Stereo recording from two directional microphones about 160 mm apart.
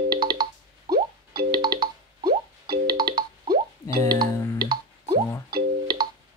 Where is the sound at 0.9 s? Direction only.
75° right (ahead or behind).